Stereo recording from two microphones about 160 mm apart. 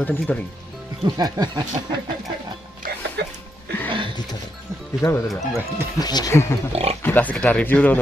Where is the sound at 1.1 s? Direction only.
25° right (ahead or behind).